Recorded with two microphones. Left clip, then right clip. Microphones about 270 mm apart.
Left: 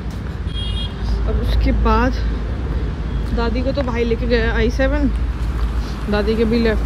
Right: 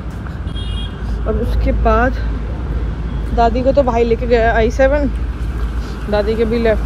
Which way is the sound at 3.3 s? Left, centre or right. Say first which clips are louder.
Right 9 dB; centre.